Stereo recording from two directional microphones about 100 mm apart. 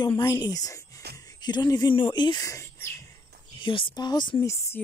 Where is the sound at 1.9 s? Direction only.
55° left (ahead or behind).